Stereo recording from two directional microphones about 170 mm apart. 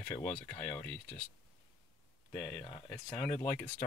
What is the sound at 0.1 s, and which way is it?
Speech, 10° left (ahead or behind).